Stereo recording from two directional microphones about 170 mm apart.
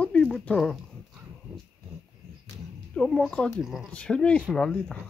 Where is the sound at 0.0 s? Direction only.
10° left (ahead or behind).